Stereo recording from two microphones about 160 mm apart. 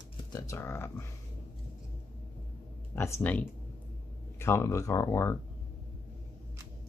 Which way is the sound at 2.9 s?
15° left (ahead or behind).